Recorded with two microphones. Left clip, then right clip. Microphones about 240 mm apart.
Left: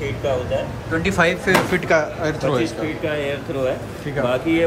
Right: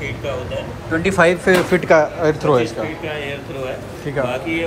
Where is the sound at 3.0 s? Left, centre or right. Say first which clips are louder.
Left 2 dB; left.